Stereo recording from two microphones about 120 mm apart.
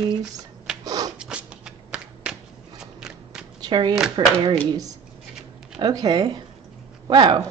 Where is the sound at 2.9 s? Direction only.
5° right (ahead or behind).